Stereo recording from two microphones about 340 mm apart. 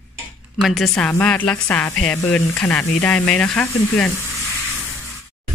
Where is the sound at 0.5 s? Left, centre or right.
Centre.